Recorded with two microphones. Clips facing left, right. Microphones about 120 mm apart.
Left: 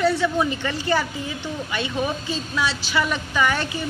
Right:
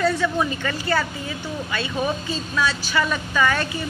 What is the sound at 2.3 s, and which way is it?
A woman's voice, 15° left (ahead or behind).